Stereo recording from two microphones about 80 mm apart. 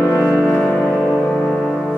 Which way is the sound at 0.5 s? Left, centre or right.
Centre.